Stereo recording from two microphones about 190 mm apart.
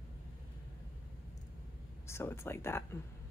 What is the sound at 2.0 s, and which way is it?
Speech, 15° left (ahead or behind).